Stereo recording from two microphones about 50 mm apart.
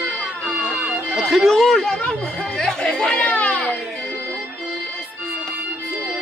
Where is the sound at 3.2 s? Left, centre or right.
Left.